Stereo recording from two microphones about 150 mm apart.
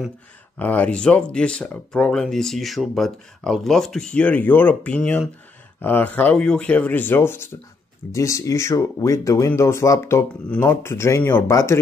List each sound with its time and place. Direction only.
0.6 s speech: 10° left (ahead or behind)